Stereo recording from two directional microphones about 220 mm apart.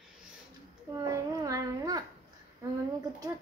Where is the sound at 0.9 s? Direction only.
15° right (ahead or behind).